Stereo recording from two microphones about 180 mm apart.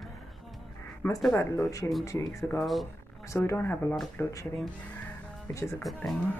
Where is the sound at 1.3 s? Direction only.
15° left (ahead or behind).